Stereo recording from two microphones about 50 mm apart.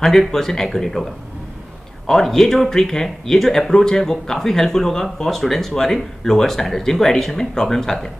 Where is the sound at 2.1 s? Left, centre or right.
Centre.